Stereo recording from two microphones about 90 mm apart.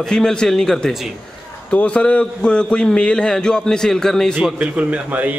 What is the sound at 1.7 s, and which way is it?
A man's voice, 15° left (ahead or behind).